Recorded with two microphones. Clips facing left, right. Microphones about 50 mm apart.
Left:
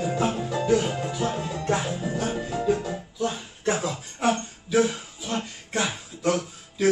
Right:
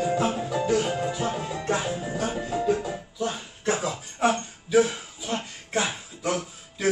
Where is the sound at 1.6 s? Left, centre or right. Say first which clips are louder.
Left 1 dB; centre.